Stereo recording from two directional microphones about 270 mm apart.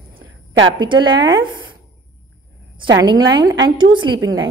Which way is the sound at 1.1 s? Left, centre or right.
Right.